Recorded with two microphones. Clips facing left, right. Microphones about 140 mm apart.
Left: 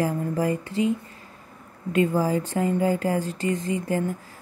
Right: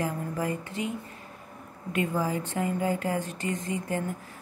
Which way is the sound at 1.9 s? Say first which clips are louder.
Left 6 dB; 30° left (ahead or behind).